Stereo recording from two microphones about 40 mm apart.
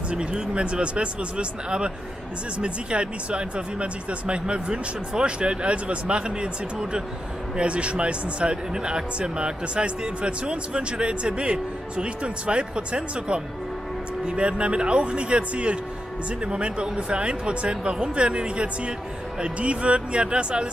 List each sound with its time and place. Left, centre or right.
0.1 s speech: right